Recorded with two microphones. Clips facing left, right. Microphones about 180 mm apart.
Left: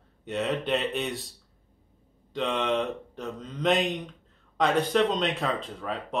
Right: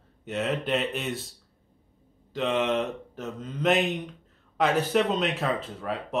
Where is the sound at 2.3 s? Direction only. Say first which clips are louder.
Right 1 dB; centre (ahead or behind).